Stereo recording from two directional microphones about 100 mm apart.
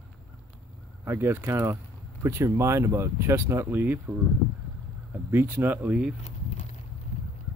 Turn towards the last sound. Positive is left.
turn(degrees=-10)  # may be behind; listen again after turning